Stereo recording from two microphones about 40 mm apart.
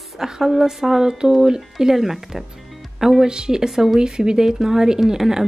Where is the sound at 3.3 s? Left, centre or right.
Centre.